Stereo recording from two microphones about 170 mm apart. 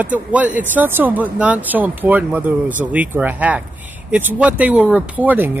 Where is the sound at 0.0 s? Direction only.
10° right (ahead or behind).